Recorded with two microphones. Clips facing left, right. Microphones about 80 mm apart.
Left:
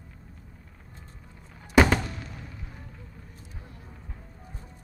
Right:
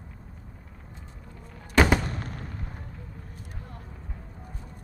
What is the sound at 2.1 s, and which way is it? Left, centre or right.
Artillery fire, right.